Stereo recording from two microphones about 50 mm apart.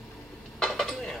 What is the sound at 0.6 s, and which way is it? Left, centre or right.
Dishes, centre.